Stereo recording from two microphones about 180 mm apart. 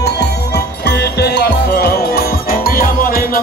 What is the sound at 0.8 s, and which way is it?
Music, 65° left (ahead or behind).